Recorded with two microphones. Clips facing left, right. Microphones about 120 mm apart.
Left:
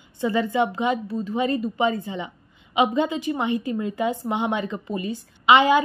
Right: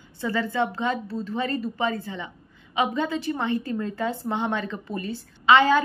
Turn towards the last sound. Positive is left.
turn(degrees=15)  # may be behind; listen again after turning